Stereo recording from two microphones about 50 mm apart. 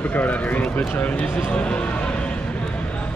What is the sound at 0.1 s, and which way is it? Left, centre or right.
Speech, left.